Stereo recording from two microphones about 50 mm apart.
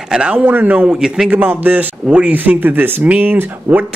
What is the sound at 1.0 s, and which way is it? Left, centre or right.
Speech, centre.